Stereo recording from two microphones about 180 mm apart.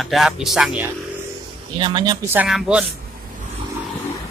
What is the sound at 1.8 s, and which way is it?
Speech, 25° right (ahead or behind).